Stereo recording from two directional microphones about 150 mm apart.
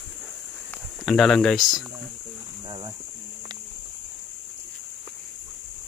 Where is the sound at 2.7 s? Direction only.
30° right (ahead or behind).